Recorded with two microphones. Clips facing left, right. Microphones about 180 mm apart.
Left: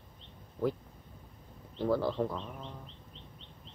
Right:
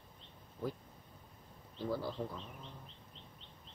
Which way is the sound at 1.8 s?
70° left (ahead or behind).